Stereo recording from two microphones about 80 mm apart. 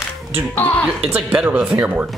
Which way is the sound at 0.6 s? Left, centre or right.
Left.